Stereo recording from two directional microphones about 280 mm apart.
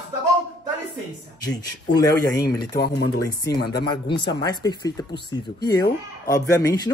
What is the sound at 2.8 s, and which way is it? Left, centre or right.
Speech, left.